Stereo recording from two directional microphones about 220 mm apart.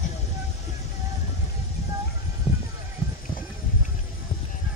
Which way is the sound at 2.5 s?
25° left (ahead or behind).